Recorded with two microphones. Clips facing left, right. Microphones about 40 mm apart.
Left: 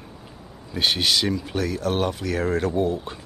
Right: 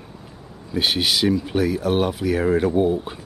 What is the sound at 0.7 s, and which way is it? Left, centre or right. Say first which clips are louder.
Speech: right 1 dB; centre.